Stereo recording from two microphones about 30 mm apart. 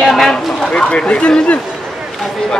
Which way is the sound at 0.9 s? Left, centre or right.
Left.